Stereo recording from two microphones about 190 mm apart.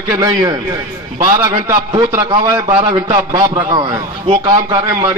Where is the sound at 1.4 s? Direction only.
20° right (ahead or behind).